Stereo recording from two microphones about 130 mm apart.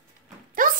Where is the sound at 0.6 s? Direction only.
90° right.